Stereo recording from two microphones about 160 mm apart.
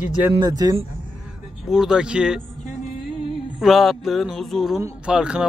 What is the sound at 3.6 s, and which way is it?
Speech, centre (ahead or behind).